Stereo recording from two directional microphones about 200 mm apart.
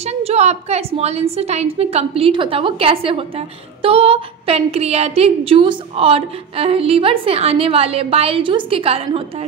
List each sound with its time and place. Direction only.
0.0 s a woman's voice: 30° right (ahead or behind)